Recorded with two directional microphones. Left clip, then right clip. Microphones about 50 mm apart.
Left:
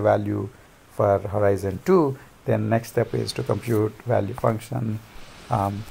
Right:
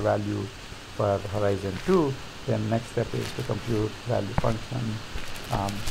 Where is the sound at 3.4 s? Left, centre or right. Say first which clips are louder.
Left 7 dB; left.